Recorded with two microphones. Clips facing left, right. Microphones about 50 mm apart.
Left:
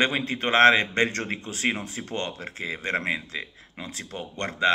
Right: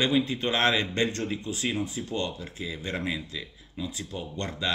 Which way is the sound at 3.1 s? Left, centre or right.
Left.